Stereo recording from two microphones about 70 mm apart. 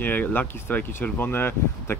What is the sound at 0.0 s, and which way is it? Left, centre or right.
Speech, left.